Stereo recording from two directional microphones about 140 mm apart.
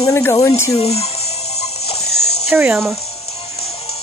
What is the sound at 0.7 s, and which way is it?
Speech, 45° left (ahead or behind).